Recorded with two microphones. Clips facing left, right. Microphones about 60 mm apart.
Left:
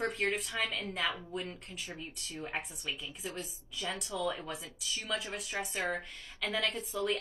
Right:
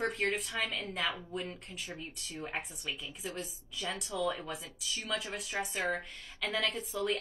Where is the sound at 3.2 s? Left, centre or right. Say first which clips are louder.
Right 2 dB; centre.